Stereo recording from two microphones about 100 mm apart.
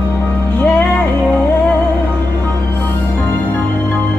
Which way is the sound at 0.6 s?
15° left (ahead or behind).